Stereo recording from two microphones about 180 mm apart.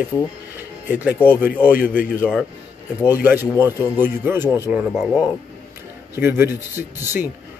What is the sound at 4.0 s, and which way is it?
Speech, 10° right (ahead or behind).